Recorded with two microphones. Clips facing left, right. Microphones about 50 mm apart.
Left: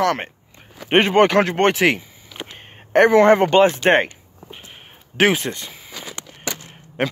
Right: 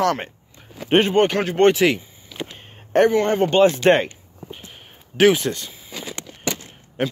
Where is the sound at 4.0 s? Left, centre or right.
Left.